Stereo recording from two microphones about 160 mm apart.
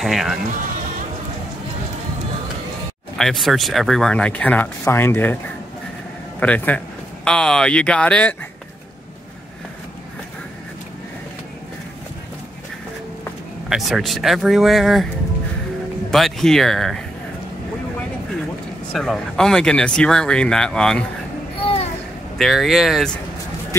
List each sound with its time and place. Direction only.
0.0 s speech: centre (ahead or behind)
3.2 s speech: centre (ahead or behind)
6.4 s speech: 10° left (ahead or behind)
13.7 s speech: centre (ahead or behind)
16.1 s speech: centre (ahead or behind)
18.9 s speech: 5° left (ahead or behind)
21.5 s a sound: 35° left (ahead or behind)
22.4 s speech: centre (ahead or behind)